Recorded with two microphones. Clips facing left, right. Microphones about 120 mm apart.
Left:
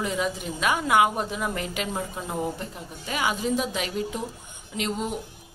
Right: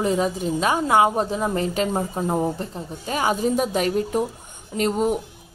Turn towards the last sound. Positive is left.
turn(degrees=-45)  # may be behind; listen again after turning